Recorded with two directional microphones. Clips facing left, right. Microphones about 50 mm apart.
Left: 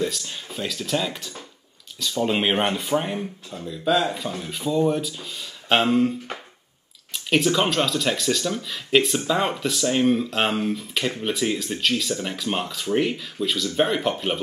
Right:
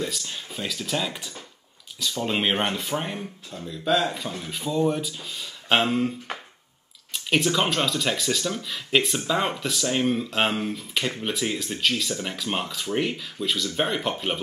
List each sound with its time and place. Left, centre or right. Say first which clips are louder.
0.0 s speech: left 4 dB; centre